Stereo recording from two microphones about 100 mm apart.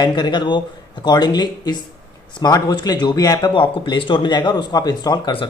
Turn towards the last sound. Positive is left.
turn(degrees=45)  # may be behind; listen again after turning